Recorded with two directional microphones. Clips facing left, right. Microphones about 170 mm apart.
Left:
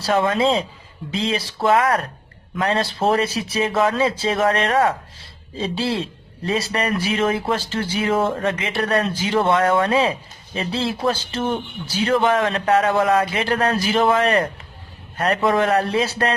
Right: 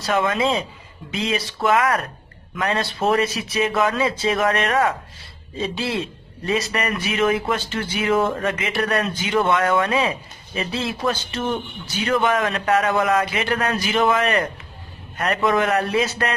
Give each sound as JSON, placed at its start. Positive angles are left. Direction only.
{"t": 0.0, "sound": "a man's voice", "side_deg": 30}